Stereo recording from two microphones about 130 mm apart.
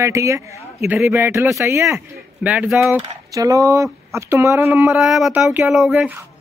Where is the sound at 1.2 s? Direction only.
20° right (ahead or behind).